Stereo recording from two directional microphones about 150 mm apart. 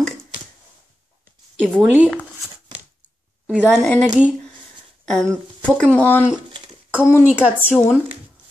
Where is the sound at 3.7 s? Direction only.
5° left (ahead or behind).